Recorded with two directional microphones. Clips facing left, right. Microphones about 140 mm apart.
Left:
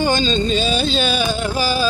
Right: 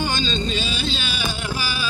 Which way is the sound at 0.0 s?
45° left (ahead or behind).